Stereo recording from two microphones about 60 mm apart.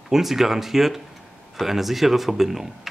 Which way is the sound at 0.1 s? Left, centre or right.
Centre.